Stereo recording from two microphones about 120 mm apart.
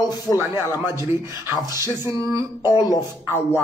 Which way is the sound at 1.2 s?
35° left (ahead or behind).